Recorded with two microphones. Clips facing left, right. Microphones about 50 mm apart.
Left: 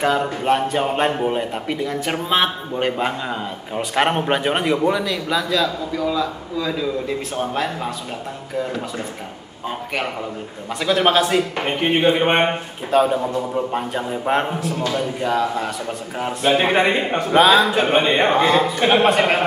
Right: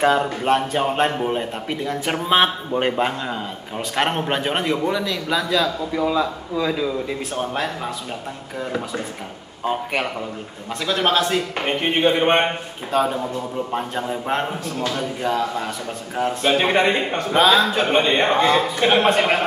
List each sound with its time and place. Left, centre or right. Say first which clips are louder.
0.2 s a man's voice: left 1 dB; centre
2.2 s a man's voice: right 3 dB; centre
3.0 s a man's voice: even; centre
5.9 s a man's voice: right 2 dB; centre
10.8 s a man's voice: left 3 dB; centre